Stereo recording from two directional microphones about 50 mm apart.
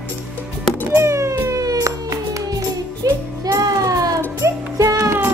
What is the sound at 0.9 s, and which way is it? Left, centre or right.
Music, right.